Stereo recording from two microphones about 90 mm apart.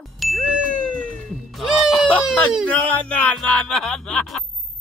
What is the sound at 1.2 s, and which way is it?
Cat, centre (ahead or behind).